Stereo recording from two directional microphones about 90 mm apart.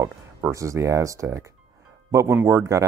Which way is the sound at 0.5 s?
35° right (ahead or behind).